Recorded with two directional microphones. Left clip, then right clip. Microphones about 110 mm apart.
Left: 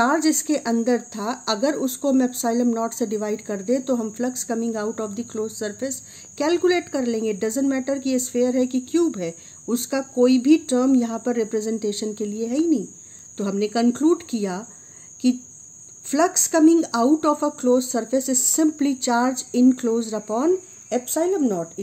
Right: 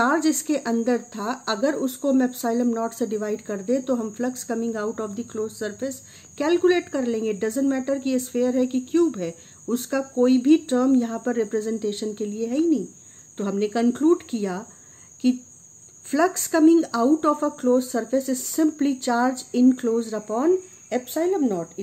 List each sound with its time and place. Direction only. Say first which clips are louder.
0.0 s speech: left 1 dB; 30° left (ahead or behind)